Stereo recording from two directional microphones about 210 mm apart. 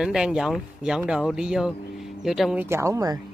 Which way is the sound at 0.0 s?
5° right (ahead or behind).